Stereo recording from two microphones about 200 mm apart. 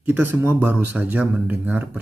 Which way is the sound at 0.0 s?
10° right (ahead or behind).